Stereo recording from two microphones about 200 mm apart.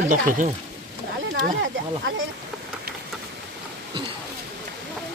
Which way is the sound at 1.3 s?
55° right (ahead or behind).